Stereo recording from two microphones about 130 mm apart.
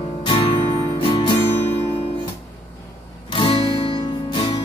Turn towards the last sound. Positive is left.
turn(degrees=45)  # may be behind; listen again after turning